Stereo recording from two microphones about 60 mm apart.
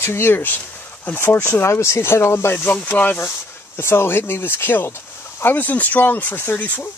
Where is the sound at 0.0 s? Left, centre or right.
Left.